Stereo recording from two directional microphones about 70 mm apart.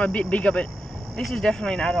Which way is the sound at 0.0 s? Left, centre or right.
Centre.